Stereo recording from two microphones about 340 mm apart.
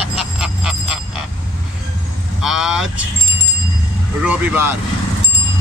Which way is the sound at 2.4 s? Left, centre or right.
Centre.